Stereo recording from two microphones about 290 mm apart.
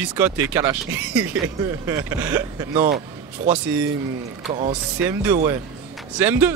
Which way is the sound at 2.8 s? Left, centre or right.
Right.